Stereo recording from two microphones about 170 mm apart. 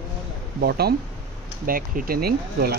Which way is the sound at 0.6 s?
70° right (ahead or behind).